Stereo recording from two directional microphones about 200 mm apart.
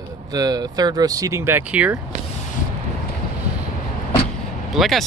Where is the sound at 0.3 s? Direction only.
20° right (ahead or behind).